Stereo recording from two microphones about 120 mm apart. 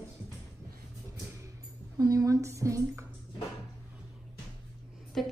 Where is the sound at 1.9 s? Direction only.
30° right (ahead or behind).